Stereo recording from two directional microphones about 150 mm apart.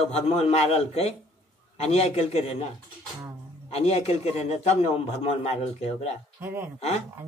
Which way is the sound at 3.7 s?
45° left (ahead or behind).